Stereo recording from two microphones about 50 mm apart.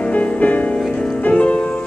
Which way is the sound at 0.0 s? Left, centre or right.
Left.